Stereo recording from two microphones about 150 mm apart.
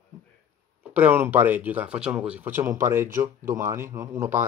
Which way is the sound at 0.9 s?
15° right (ahead or behind).